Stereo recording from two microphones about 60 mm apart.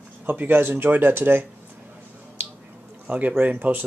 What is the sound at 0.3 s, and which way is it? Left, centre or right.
Speech, right.